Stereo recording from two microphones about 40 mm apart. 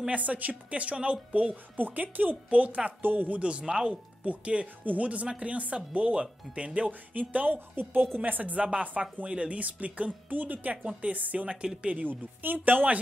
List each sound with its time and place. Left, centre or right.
0.1 s speech: right
1.8 s speech: right
3.0 s speech: right
3.3 s speech: right
3.9 s speech: right
6.9 s speech: right
7.7 s a woman's voice: right
8.2 s speech: right
9.2 s speech: right
11.4 s speech: right
11.9 s speech: right